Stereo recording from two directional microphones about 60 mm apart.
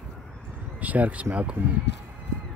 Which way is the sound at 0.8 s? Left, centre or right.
Right.